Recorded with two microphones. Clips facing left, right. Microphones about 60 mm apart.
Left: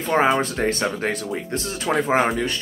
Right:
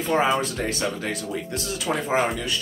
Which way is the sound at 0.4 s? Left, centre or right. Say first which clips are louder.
Left 4 dB; left.